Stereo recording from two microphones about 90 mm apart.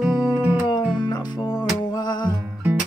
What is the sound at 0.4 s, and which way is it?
Music, 15° right (ahead or behind).